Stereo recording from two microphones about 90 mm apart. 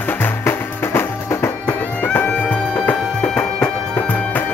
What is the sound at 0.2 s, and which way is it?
Music, 25° left (ahead or behind).